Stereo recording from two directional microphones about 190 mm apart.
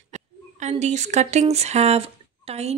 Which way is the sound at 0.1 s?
40° right (ahead or behind).